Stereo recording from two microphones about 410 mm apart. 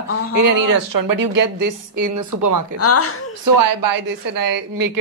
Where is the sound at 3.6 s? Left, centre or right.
Right.